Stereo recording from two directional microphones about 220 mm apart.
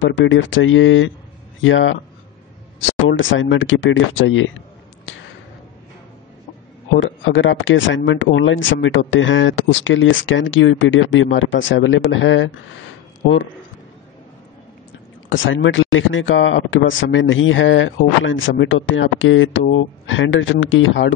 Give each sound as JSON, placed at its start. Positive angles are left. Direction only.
{"t": 0.0, "sound": "speech", "side_deg": 55}
{"t": 7.0, "sound": "speech", "side_deg": 60}
{"t": 15.2, "sound": "speech", "side_deg": 60}